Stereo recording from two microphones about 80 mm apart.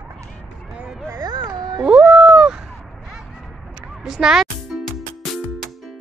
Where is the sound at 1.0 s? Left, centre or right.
Right.